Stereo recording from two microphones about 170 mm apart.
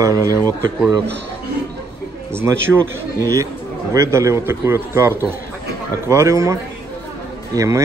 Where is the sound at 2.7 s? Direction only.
Centre (ahead or behind).